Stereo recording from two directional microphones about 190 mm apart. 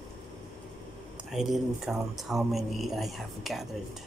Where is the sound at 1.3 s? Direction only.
Centre (ahead or behind).